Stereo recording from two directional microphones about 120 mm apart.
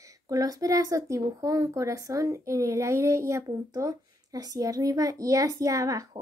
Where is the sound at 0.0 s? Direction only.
30° right (ahead or behind).